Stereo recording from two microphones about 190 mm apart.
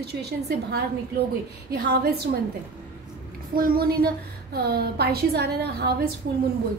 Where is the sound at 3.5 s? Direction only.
50° right (ahead or behind).